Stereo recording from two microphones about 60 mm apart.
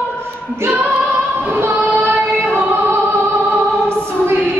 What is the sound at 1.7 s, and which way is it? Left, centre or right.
Child singing, right.